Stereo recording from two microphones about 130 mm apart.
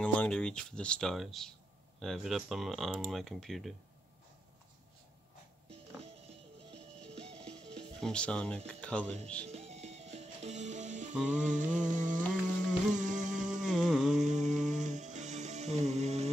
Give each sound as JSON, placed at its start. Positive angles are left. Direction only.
{"t": 0.0, "sound": "speech", "side_deg": 10}
{"t": 7.1, "sound": "music", "side_deg": -50}
{"t": 7.3, "sound": "music", "side_deg": 5}
{"t": 9.5, "sound": "music", "side_deg": -55}
{"t": 11.2, "sound": "a sound", "side_deg": -70}
{"t": 13.7, "sound": "a sound", "side_deg": 0}
{"t": 14.1, "sound": "music", "side_deg": -65}